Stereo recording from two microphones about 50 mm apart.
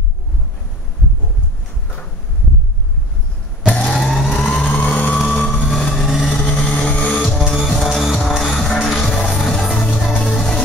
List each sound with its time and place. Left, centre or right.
3.6 s a sound: left
4.0 s vehicle: centre
5.7 s vehicle: centre
6.0 s vehicle: centre
6.4 s vehicle: left
7.2 s music: centre